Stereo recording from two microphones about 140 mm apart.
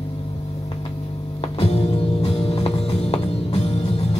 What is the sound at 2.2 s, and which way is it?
Music, 45° left (ahead or behind).